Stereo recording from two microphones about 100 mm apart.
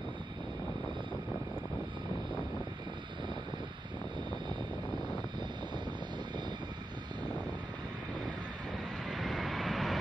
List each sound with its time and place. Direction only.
9.1 s vehicle: centre (ahead or behind)